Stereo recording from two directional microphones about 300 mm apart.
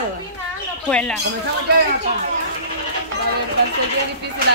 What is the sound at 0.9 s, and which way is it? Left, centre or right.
Speech, centre.